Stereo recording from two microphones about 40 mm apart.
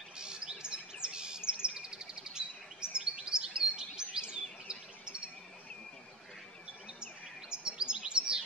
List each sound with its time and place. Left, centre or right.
0.2 s chirp: centre
7.0 s chirp: centre